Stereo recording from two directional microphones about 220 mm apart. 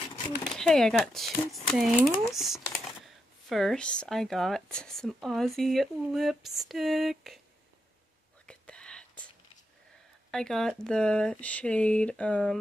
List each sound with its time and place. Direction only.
0.6 s speech: 5° left (ahead or behind)
8.5 s whispering: 5° left (ahead or behind)
10.3 s speech: centre (ahead or behind)